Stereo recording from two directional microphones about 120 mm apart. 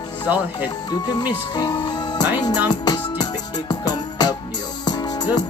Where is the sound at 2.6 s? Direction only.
35° left (ahead or behind).